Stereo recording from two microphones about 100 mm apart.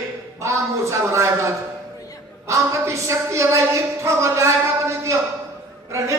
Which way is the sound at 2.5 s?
30° right (ahead or behind).